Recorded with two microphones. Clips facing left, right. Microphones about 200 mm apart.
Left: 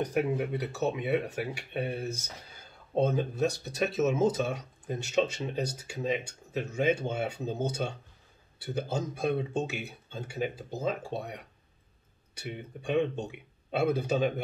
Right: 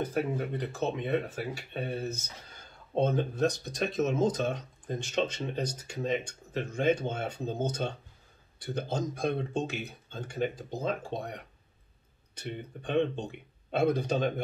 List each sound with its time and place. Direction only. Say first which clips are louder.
0.0 s speech: left 2 dB; 10° left (ahead or behind)